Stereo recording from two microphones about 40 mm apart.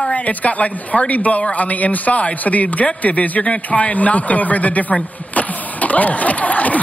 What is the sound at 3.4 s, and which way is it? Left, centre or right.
Speech, left.